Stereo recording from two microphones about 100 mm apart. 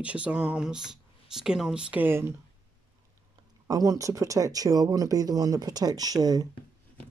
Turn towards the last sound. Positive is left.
turn(degrees=-40)  # may be behind; listen again after turning